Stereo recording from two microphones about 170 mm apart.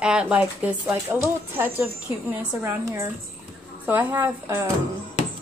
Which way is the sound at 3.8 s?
10° right (ahead or behind).